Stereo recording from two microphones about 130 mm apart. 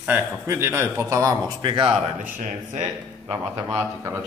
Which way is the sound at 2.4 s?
70° right (ahead or behind).